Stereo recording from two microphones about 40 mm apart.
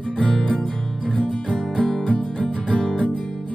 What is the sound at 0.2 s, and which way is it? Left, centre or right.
Music, left.